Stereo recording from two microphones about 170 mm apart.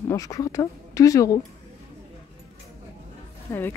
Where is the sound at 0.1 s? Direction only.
20° left (ahead or behind).